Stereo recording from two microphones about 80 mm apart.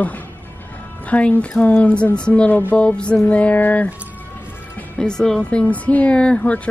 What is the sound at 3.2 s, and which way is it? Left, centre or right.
Music, centre.